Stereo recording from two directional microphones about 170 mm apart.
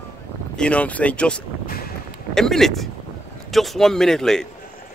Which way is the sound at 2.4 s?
Centre (ahead or behind).